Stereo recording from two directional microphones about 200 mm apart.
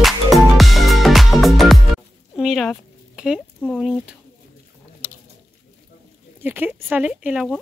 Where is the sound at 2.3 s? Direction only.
5° right (ahead or behind).